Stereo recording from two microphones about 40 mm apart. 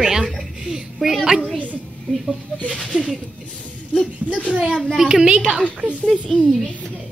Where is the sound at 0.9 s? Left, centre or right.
Centre.